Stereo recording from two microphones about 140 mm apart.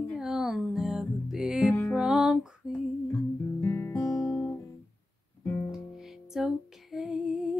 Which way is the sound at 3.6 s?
15° left (ahead or behind).